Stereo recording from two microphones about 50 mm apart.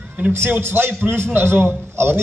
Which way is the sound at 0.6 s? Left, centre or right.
Right.